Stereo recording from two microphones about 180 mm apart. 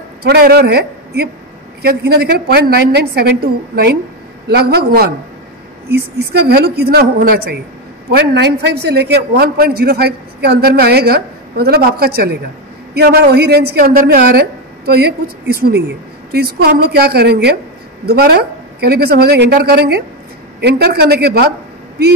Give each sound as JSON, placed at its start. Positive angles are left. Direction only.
{"t": 0.2, "sound": "a man's voice", "side_deg": -60}